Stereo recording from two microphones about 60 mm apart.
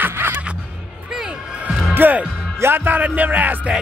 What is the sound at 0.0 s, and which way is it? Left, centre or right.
Music, right.